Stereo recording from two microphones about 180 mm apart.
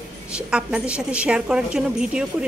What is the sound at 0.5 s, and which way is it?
A woman's voice, 5° right (ahead or behind).